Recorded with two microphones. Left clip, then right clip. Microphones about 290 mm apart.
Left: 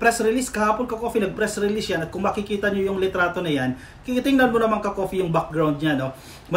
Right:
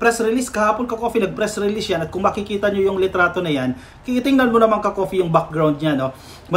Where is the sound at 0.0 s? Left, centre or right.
Centre.